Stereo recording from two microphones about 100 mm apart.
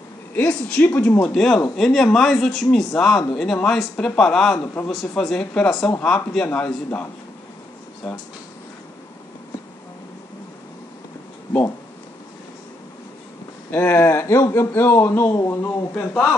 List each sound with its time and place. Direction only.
0.3 s speech: 10° left (ahead or behind)
1.2 s speech: 5° left (ahead or behind)
13.7 s speech: 25° left (ahead or behind)